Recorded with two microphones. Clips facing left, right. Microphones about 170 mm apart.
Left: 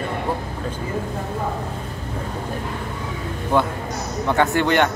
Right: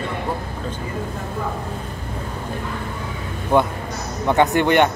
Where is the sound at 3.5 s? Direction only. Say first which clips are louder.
Right 2 dB; 15° right (ahead or behind).